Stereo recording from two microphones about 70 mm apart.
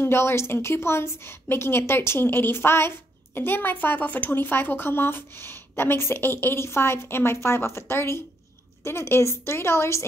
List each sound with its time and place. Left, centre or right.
0.0 s speech: left